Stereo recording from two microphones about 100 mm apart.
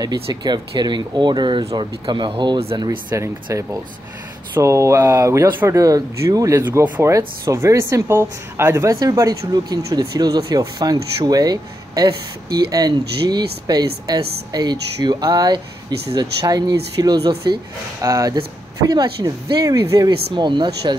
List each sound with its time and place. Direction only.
0.0 s speech: 40° right (ahead or behind)
3.2 s speech: 30° right (ahead or behind)
18.3 s speech: 45° right (ahead or behind)